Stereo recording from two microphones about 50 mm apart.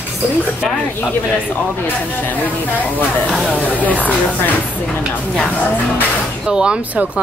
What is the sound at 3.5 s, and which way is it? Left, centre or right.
Speech, left.